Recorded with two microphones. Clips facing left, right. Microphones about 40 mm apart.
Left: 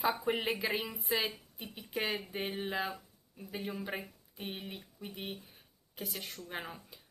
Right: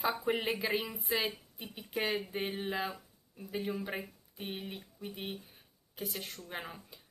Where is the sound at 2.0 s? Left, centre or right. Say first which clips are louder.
Right 2 dB; centre.